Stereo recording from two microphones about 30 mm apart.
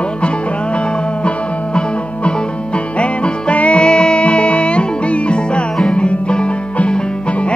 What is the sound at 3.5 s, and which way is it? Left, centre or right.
Music, left.